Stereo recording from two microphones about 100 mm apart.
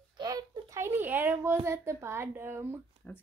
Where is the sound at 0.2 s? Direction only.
40° right (ahead or behind); by 2.8 s 20° right (ahead or behind).